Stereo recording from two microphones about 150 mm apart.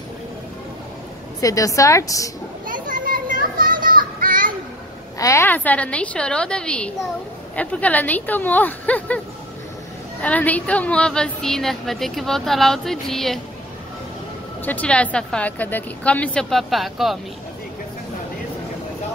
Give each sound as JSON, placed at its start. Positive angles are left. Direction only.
{"t": 1.4, "sound": "a woman's voice", "side_deg": 20}
{"t": 2.6, "sound": "children playing", "side_deg": -65}
{"t": 5.2, "sound": "a woman's voice", "side_deg": 15}
{"t": 10.2, "sound": "a woman's voice", "side_deg": 10}
{"t": 14.6, "sound": "a woman's voice", "side_deg": 10}